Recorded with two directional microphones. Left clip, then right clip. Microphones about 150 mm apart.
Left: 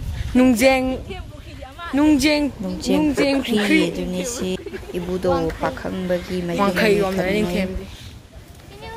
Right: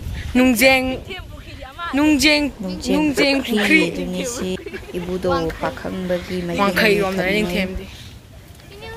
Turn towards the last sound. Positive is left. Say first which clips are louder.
# right 2 dB
turn(degrees=10)  # may be behind; listen again after turning